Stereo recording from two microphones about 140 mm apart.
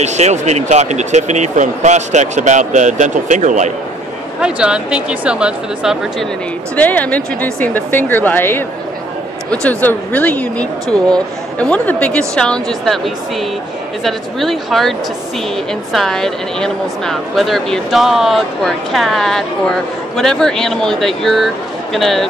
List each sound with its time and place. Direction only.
0.0 s speech: 55° right (ahead or behind)
4.4 s speech: 5° right (ahead or behind)
6.7 s speech: 10° left (ahead or behind)